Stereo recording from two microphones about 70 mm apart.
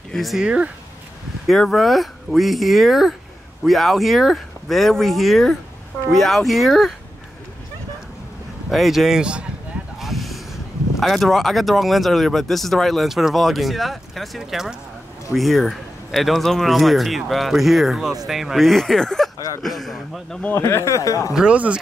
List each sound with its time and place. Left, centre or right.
0.1 s speech: centre
0.4 s speech: centre
1.5 s speech: centre
8.6 s speech: centre
9.9 s boat: centre
11.0 s speech: centre
19.3 s speech: left
19.6 s speech: centre
20.5 s speech: left
21.3 s speech: centre